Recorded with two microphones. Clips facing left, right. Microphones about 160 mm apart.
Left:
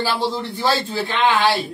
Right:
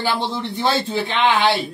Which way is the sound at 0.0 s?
20° right (ahead or behind).